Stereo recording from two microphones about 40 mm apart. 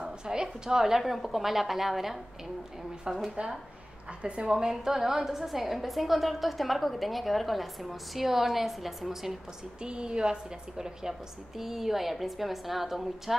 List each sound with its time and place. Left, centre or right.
0.0 s a woman's voice: centre
3.3 s a woman's voice: centre
9.8 s a woman's voice: right; by 13.4 s centre